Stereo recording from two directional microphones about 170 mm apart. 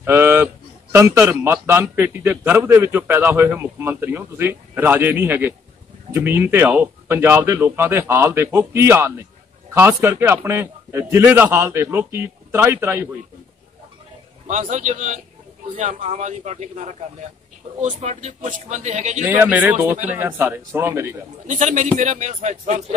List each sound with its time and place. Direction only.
0.0 s a sound: 15° right (ahead or behind)
0.9 s a man's voice: 15° right (ahead or behind)
14.5 s a man's voice: 45° right (ahead or behind)
19.2 s a man's voice: 15° right (ahead or behind)
21.5 s a man's voice: 45° right (ahead or behind)